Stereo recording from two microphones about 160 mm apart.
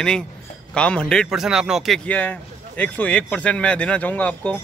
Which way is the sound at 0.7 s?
5° left (ahead or behind).